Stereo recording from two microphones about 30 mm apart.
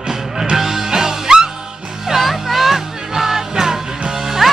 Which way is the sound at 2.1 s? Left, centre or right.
Centre.